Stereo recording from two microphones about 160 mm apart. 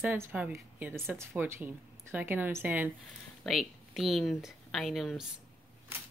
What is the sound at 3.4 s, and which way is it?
Speech, centre (ahead or behind).